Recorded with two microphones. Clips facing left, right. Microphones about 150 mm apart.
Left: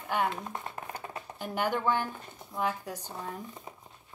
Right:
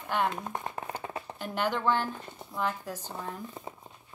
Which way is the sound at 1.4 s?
10° left (ahead or behind).